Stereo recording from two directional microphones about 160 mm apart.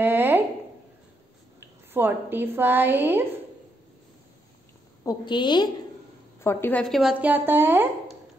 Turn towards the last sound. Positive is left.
turn(degrees=-15)  # may be behind; listen again after turning